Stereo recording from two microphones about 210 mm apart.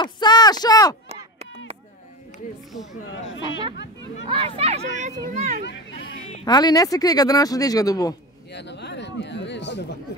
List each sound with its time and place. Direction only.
0.0 s a sound: 20° left (ahead or behind)
4.3 s speech: 25° right (ahead or behind)
5.6 s hubbub: 55° left (ahead or behind)
6.4 s speech: 20° left (ahead or behind)
8.5 s chatter: 55° left (ahead or behind)